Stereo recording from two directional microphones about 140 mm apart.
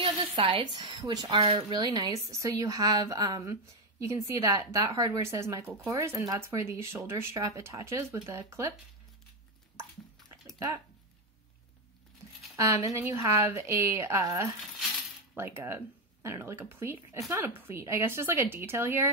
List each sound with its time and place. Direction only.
0.0 s speech: 35° right (ahead or behind)
12.5 s speech: 25° right (ahead or behind)